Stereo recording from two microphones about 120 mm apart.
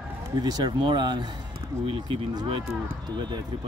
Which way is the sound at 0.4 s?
35° right (ahead or behind).